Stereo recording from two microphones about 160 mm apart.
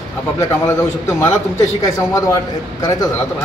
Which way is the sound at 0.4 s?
15° left (ahead or behind).